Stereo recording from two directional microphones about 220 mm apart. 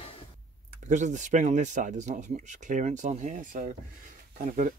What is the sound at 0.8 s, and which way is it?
Speech, 35° right (ahead or behind).